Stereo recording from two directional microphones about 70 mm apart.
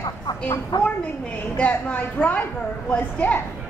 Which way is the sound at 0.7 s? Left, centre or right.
Left.